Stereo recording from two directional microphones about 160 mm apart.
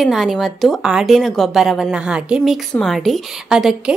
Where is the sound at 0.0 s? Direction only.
Centre (ahead or behind).